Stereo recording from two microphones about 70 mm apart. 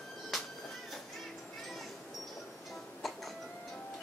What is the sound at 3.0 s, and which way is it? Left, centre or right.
Music, centre.